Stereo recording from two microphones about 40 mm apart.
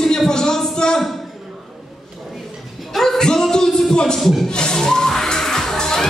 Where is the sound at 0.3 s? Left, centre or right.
Centre.